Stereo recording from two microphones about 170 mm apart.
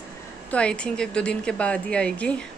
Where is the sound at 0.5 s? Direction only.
5° left (ahead or behind).